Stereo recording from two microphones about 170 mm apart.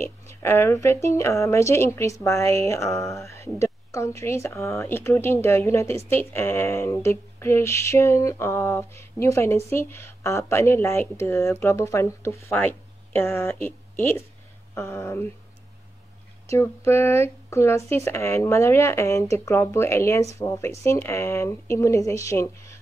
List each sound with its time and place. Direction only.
0.3 s speech: 15° left (ahead or behind)
16.4 s speech: 15° left (ahead or behind)